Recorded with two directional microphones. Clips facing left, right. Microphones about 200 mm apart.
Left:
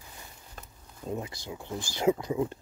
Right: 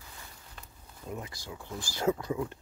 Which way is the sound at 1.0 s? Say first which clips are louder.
Left 5 dB; 25° left (ahead or behind).